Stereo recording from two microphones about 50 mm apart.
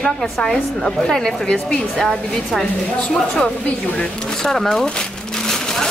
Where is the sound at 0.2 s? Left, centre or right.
Centre.